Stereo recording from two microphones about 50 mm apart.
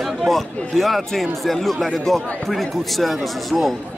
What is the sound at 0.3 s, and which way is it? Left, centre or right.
Speech, centre.